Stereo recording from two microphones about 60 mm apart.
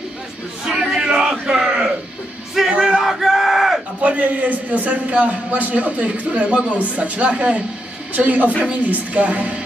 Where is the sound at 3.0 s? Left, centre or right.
Centre.